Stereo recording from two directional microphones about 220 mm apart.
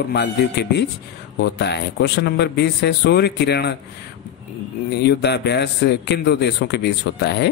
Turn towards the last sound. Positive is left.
turn(degrees=50)  # may be behind; listen again after turning